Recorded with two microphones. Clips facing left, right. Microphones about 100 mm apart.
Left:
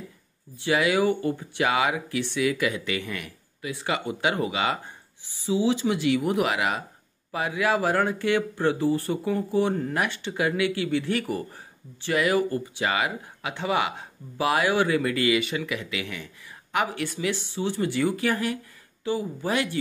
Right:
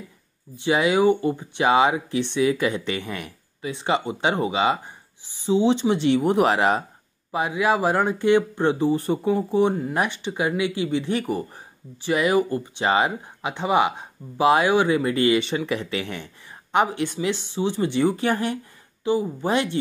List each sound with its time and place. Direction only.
0.6 s speech: 20° right (ahead or behind)
7.2 s speech: 20° right (ahead or behind)
16.7 s speech: 20° right (ahead or behind)